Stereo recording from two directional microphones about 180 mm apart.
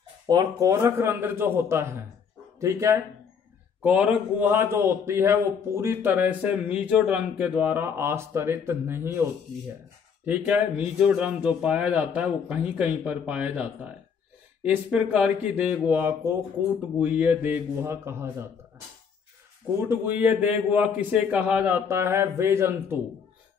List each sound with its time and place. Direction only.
0.3 s a man's voice: 20° right (ahead or behind)
10.2 s a man's voice: 10° right (ahead or behind)
19.8 s a man's voice: 10° right (ahead or behind)